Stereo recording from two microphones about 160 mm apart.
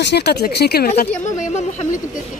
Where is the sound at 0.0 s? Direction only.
90° left.